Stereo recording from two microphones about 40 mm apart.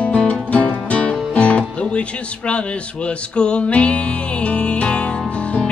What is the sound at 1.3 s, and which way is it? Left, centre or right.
Speech, left.